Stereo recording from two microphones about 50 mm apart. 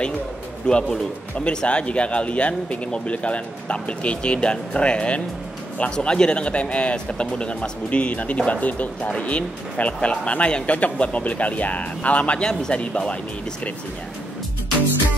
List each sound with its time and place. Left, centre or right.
0.7 s speech: centre